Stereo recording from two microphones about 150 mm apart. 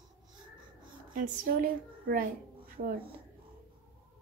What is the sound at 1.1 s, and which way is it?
A woman's voice, 65° right (ahead or behind).